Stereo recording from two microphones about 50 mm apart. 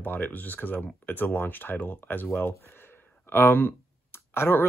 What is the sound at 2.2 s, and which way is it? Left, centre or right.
Speech, left.